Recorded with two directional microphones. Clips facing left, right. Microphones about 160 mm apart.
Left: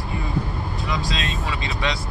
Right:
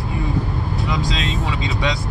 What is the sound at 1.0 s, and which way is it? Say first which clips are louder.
Speech: right 4 dB; 20° right (ahead or behind).